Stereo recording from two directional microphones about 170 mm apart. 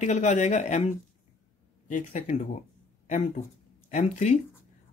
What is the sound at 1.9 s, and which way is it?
Speech, 45° left (ahead or behind).